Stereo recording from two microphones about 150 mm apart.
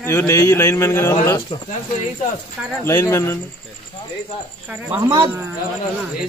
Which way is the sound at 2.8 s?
20° left (ahead or behind).